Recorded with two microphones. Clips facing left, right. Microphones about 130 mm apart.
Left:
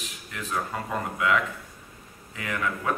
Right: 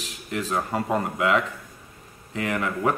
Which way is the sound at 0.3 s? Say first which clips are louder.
Right 5 dB; 35° right (ahead or behind).